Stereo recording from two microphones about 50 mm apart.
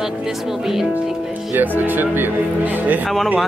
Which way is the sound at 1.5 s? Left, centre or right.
Right.